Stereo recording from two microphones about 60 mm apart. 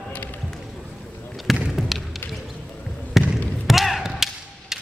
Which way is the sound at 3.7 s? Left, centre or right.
Centre.